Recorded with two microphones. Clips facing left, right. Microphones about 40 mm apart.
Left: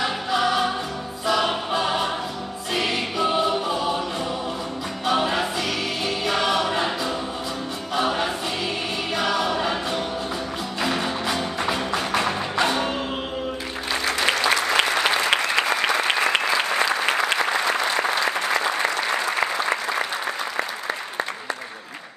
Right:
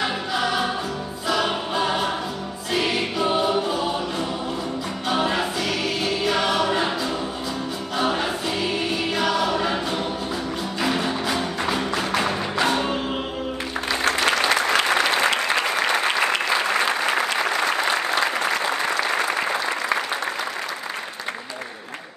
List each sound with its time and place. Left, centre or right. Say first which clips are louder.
0.0 s choir: left 1 dB; centre
5.0 s music: left 1 dB; centre
14.4 s applause: right 1 dB; right
17.8 s applause: even; right